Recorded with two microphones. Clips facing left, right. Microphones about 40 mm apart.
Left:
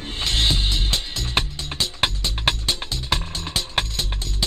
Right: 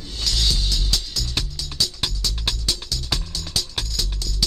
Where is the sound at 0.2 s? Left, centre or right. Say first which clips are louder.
Left 2 dB; left.